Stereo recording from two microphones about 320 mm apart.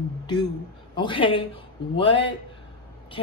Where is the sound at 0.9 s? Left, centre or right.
Centre.